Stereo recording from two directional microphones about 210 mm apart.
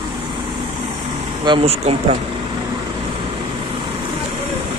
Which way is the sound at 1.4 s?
25° right (ahead or behind).